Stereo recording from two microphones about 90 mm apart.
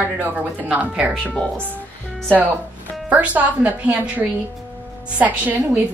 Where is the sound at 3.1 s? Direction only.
15° right (ahead or behind).